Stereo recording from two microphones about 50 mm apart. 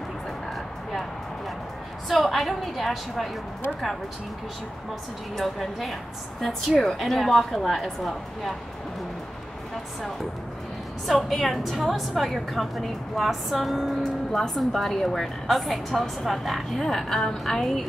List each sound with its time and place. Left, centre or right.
2.0 s a woman's voice: centre
5.3 s a woman's voice: centre
11.1 s a woman's voice: centre
14.0 s a woman's voice: centre